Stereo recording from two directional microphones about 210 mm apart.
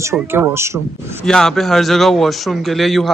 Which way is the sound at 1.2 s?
Centre (ahead or behind).